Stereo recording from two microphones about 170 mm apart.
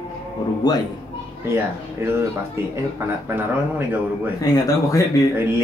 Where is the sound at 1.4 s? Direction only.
15° right (ahead or behind).